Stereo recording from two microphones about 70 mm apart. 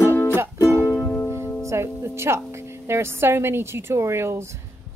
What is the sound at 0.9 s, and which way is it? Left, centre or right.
Music, left.